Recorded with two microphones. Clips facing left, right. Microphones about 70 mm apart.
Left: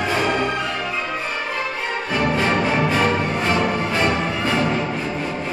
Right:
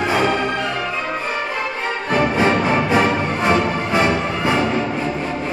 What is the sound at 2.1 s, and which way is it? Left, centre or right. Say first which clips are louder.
Music: right 3 dB; right.